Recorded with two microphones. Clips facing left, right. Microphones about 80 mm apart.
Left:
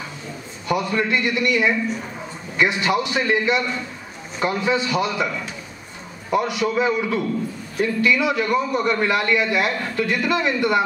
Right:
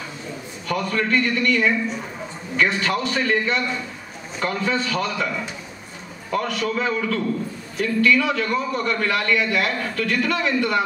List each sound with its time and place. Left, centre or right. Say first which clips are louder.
0.7 s a man's voice: left 2 dB; centre
6.3 s a man's voice: left 3 dB; centre